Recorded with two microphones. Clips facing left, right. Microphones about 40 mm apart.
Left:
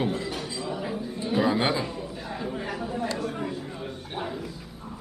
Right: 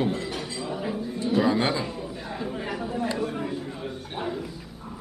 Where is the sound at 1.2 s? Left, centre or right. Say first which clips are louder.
Right 1 dB; centre.